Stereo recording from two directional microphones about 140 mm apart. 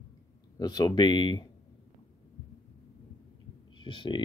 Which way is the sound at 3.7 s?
35° left (ahead or behind).